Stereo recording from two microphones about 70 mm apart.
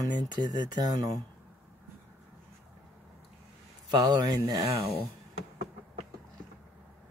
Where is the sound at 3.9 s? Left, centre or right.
Right.